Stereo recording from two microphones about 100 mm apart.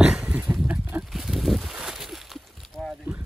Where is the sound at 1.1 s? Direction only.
Centre (ahead or behind).